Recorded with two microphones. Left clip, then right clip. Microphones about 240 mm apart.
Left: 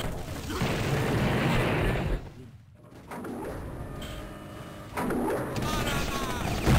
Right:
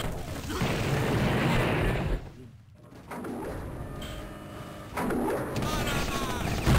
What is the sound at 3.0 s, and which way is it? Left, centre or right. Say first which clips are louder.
Dog: right 1 dB; right.